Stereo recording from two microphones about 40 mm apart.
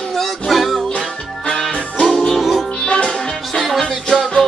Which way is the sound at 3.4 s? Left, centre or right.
Centre.